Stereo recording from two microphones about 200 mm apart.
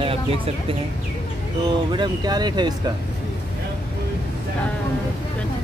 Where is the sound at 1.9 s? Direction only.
20° right (ahead or behind).